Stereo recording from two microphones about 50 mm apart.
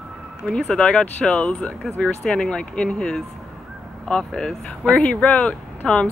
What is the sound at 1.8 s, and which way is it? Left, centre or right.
Speech, centre.